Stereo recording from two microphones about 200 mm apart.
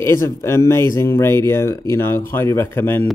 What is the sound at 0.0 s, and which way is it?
Speech, 15° left (ahead or behind).